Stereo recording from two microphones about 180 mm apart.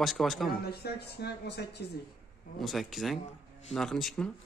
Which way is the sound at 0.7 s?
65° left (ahead or behind).